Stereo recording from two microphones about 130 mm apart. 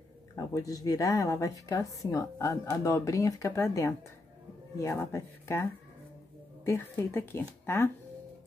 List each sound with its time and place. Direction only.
0.6 s speech: 25° left (ahead or behind)